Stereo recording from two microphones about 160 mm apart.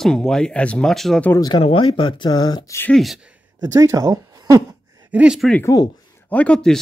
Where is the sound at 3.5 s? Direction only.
20° right (ahead or behind).